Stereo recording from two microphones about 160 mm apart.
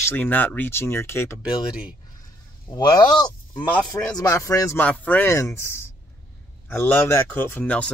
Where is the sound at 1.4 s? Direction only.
5° right (ahead or behind).